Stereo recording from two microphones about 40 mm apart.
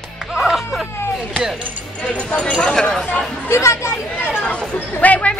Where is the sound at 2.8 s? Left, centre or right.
Left.